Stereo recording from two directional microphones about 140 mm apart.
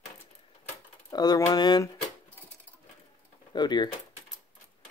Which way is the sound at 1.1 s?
30° left (ahead or behind).